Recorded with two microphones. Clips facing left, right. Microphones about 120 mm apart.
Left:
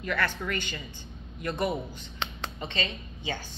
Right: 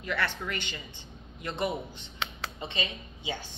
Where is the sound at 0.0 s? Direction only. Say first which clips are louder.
Left 2 dB; 20° right (ahead or behind).